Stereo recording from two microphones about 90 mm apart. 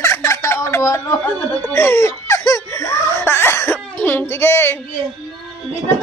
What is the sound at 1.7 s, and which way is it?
Baby cry, 25° left (ahead or behind).